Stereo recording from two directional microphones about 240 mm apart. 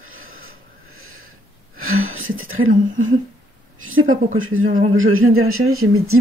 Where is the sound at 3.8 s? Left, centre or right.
Right.